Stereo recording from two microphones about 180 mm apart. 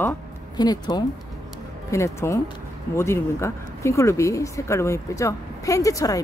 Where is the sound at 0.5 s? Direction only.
20° left (ahead or behind).